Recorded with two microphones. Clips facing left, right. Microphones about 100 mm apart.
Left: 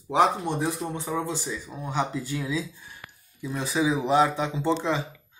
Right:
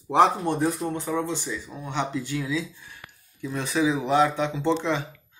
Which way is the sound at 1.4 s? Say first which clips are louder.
Even; 15° left (ahead or behind).